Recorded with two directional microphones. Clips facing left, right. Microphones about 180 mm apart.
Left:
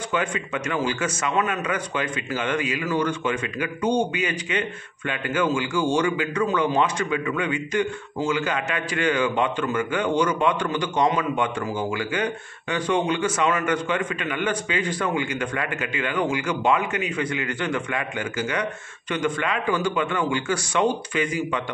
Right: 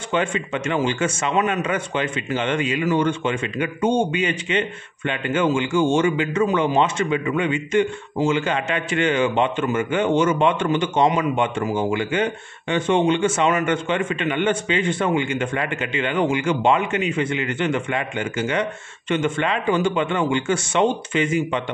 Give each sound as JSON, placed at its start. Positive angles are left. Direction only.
{"t": 0.1, "sound": "a man's voice", "side_deg": -25}